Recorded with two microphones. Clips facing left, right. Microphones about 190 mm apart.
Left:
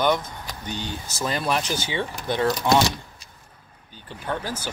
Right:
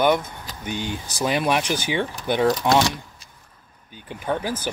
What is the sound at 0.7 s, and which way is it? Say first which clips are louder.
Speech: right 4 dB; 10° right (ahead or behind).